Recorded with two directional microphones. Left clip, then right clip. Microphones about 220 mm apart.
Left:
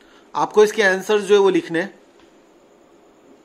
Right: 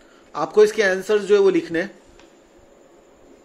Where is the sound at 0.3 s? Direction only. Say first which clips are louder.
Left 1 dB; 15° left (ahead or behind).